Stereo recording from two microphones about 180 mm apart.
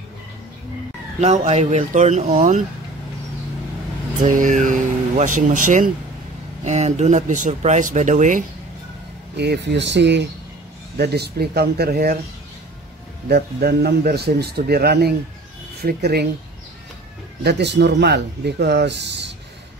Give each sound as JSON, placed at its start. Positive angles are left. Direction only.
{"t": 1.2, "sound": "speech", "side_deg": -40}
{"t": 4.2, "sound": "speech", "side_deg": -45}
{"t": 9.4, "sound": "speech", "side_deg": -70}
{"t": 11.0, "sound": "a man's voice", "side_deg": -65}
{"t": 13.3, "sound": "a man's voice", "side_deg": -65}
{"t": 17.4, "sound": "speech", "side_deg": -70}